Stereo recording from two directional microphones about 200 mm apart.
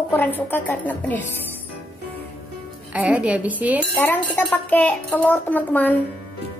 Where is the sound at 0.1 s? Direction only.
10° left (ahead or behind).